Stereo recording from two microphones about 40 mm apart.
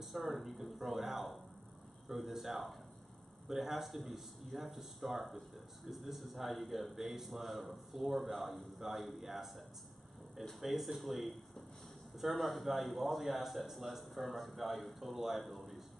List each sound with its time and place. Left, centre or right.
0.0 s a man's voice: centre